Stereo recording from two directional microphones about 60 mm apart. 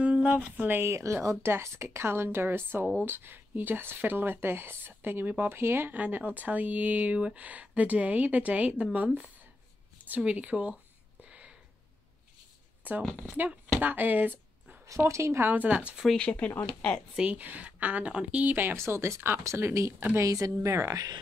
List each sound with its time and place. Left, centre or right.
0.0 s speech: centre
0.8 s a woman's voice: right
5.9 s a woman's voice: right
11.2 s a sound: right
12.8 s a woman's voice: right
15.0 s a woman's voice: right
15.4 s a woman's voice: right
16.2 s speech: left
17.2 s a woman's voice: right
18.5 s speech: right
18.8 s a woman's voice: right
20.2 s speech: right